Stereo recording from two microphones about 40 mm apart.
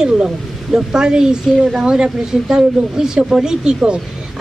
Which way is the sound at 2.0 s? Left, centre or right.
Centre.